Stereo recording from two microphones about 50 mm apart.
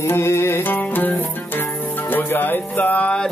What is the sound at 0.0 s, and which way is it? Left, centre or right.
Music, left.